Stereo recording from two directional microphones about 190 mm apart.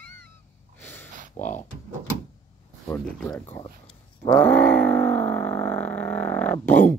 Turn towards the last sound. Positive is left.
turn(degrees=10)  # may be behind; listen again after turning